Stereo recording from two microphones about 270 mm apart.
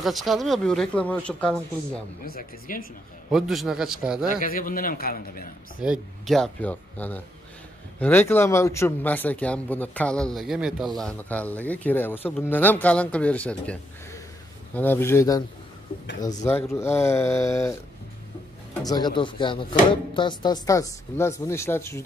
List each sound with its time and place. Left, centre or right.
0.0 s speech: centre
2.2 s a man's voice: left
3.3 s speech: centre
4.3 s a man's voice: left
5.8 s speech: centre
16.4 s speech: centre
18.8 s speech: centre